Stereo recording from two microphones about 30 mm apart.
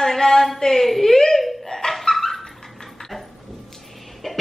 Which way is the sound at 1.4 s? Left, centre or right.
Centre.